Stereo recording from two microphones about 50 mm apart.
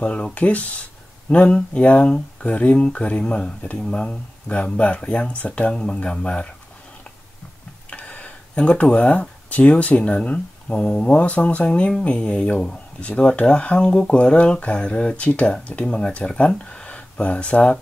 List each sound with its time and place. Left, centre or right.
0.0 s speech: left
7.9 s speech: left